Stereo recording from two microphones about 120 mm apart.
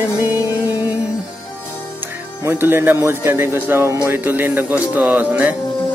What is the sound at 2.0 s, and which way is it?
Speech, 20° right (ahead or behind).